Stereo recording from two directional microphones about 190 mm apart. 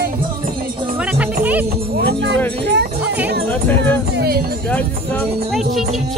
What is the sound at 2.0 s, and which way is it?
Music, 65° right (ahead or behind).